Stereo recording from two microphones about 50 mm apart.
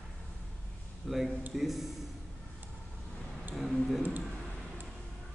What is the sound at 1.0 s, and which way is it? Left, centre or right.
Speech, centre.